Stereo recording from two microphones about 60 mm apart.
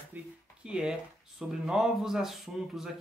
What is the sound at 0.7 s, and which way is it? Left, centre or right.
Speech, centre.